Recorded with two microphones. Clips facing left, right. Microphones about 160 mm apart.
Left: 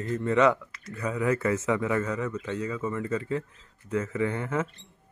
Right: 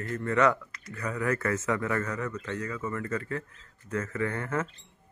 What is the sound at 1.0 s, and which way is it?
A man's voice, 20° left (ahead or behind).